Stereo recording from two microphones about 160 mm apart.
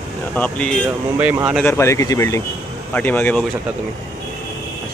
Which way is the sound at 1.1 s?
10° right (ahead or behind).